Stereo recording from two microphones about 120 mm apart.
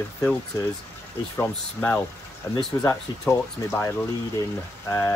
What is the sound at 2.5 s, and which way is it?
Speech, 25° left (ahead or behind).